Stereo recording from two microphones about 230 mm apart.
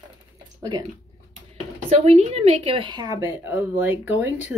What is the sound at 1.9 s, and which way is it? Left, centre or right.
A woman's voice, right.